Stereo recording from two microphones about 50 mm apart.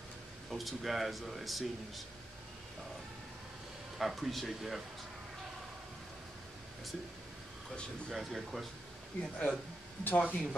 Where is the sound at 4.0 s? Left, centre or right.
Centre.